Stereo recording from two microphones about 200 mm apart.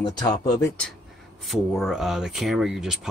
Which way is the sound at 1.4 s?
Centre (ahead or behind).